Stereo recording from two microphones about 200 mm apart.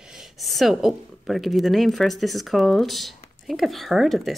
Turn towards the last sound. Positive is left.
turn(degrees=0)  # may be behind; listen again after turning